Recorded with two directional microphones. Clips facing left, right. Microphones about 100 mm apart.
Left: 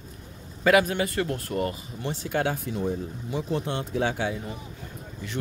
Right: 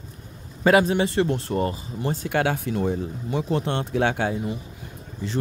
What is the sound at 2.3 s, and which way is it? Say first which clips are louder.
Speech: right 3 dB; 75° right (ahead or behind).